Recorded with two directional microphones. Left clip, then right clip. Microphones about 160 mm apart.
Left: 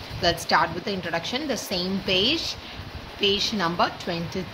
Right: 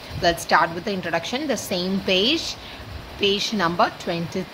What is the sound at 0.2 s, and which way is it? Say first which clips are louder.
Speech: right 3 dB; 20° right (ahead or behind).